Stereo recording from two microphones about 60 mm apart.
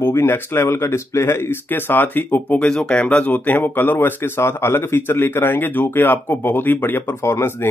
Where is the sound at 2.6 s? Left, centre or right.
Centre.